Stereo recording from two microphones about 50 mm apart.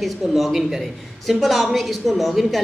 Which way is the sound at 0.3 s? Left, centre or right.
Centre.